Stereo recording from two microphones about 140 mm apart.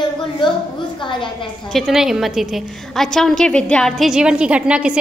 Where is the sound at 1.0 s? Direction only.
35° left (ahead or behind).